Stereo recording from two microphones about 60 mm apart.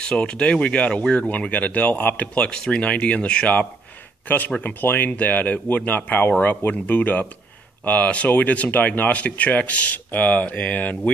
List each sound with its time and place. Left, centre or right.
0.0 s speech: centre
4.6 s speech: left